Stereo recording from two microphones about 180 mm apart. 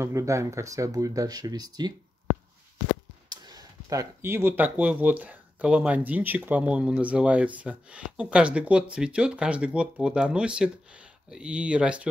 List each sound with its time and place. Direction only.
0.0 s speech: 15° right (ahead or behind)
3.3 s speech: 20° right (ahead or behind); by 12.1 s 5° right (ahead or behind)